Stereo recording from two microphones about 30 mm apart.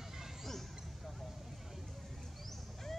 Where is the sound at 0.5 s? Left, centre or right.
Centre.